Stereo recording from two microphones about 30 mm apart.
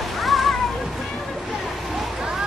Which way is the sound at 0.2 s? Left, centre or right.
Centre.